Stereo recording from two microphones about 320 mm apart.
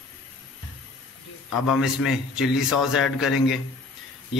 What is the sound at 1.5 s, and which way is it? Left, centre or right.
Speech, left.